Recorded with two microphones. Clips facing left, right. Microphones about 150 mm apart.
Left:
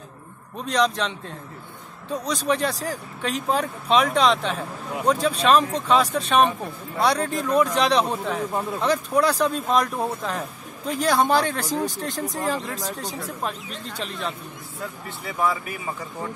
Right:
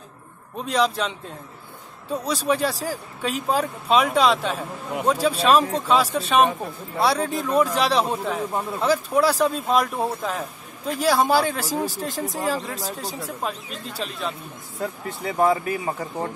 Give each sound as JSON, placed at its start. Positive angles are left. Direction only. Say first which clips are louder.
{"t": 0.7, "sound": "speech", "louder": "even", "side_deg": -5}
{"t": 2.2, "sound": "speech", "louder": "right 1 dB", "side_deg": -5}
{"t": 14.8, "sound": "speech", "louder": "right 6 dB", "side_deg": -40}